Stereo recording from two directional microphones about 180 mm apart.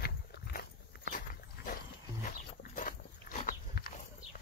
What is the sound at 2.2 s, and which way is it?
Dog, 50° left (ahead or behind).